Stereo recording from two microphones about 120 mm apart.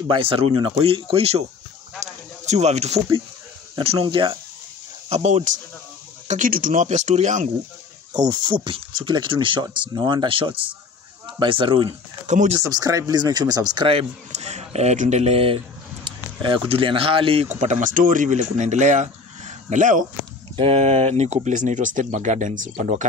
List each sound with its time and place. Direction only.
0.1 s speech: 50° right (ahead or behind)
2.4 s speech: 65° right (ahead or behind)
3.7 s speech: 55° right (ahead or behind)
5.1 s speech: 65° right (ahead or behind)
6.2 s speech: 90° right
8.1 s speech: 35° right (ahead or behind)
12.3 s speech: 90° right
12.5 s speech: 30° right (ahead or behind)
13.8 s speech: 60° right (ahead or behind)
17.5 s speech: 80° right
20.5 s speech: 50° right (ahead or behind); by 23.0 s 90° right